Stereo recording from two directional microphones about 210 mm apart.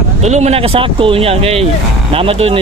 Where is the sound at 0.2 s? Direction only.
30° right (ahead or behind).